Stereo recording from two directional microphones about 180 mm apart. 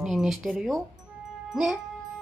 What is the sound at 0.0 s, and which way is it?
Speech, centre (ahead or behind).